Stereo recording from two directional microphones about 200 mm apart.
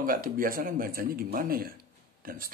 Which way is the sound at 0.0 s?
45° right (ahead or behind).